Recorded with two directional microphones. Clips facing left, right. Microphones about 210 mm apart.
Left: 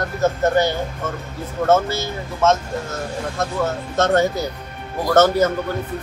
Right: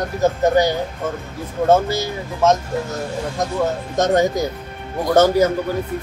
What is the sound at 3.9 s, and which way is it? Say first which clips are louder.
Speech: right 1 dB; 15° right (ahead or behind).